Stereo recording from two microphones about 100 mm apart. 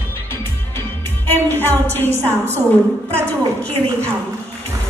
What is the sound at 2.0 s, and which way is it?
Speech, 25° right (ahead or behind).